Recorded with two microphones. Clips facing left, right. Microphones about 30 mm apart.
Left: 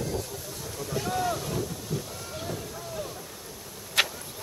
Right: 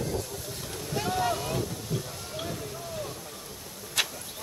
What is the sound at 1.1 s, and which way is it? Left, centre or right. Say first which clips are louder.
Boat: right 1 dB; right.